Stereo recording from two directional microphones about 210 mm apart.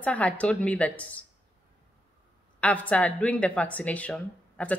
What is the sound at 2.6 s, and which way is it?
Speech, 5° left (ahead or behind).